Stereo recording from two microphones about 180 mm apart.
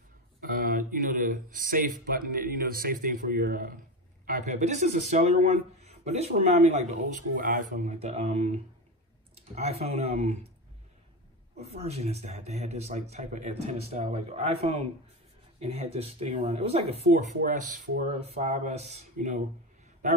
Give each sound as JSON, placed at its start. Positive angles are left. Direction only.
{"t": 0.4, "sound": "speech", "side_deg": -50}
{"t": 4.3, "sound": "speech", "side_deg": -40}
{"t": 9.6, "sound": "speech", "side_deg": -35}
{"t": 11.5, "sound": "speech", "side_deg": -35}
{"t": 17.4, "sound": "speech", "side_deg": -45}